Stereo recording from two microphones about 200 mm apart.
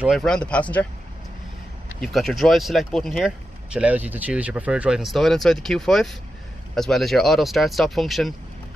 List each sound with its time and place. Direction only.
0.0 s speech: centre (ahead or behind)
2.0 s speech: centre (ahead or behind)